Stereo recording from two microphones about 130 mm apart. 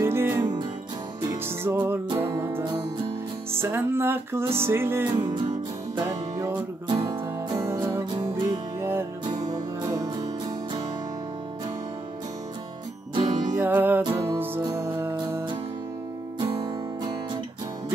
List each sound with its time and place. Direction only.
0.0 s music: 15° right (ahead or behind)
0.4 s music: 35° right (ahead or behind)
1.6 s music: 20° right (ahead or behind)
2.6 s music: 35° right (ahead or behind)
3.5 s music: 20° right (ahead or behind)
13.1 s music: 35° right (ahead or behind)
13.6 s music: 15° right (ahead or behind); by 15.0 s 30° right (ahead or behind)
16.3 s music: 30° right (ahead or behind)